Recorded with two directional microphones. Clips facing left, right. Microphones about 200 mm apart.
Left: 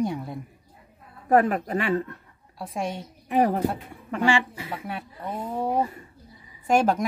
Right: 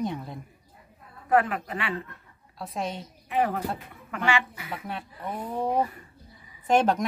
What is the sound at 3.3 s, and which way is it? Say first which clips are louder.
A woman's voice: left 5 dB; 40° left (ahead or behind).